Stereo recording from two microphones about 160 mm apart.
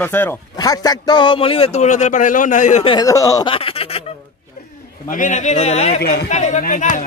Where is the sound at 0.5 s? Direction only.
25° left (ahead or behind); by 2.8 s 50° left (ahead or behind).